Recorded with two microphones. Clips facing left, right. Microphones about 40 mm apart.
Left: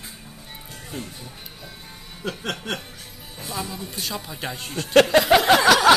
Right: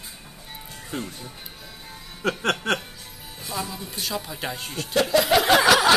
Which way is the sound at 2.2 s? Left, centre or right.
Right.